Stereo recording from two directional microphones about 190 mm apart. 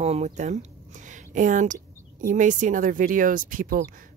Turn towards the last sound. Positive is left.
turn(degrees=-45)  # may be behind; listen again after turning